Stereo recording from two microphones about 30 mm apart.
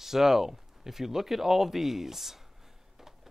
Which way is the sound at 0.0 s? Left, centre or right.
Centre.